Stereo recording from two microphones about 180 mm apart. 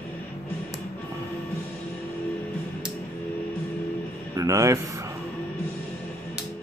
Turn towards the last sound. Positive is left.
turn(degrees=-15)  # may be behind; listen again after turning